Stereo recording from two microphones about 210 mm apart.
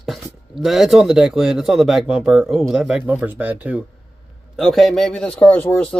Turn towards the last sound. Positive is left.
turn(degrees=5)  # may be behind; listen again after turning